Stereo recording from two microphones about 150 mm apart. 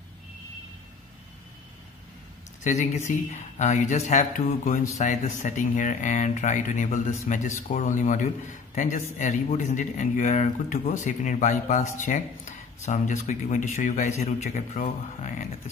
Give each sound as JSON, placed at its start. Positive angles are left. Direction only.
{"t": 2.6, "sound": "speech", "side_deg": 50}
{"t": 4.9, "sound": "speech", "side_deg": 50}